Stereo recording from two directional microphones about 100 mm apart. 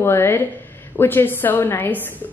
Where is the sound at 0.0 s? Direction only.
25° left (ahead or behind).